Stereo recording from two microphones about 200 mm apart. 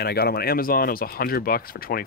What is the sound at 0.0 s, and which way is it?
Speech, 50° left (ahead or behind).